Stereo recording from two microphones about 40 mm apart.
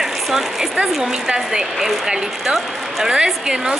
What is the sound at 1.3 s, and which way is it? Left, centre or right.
A woman's voice, centre.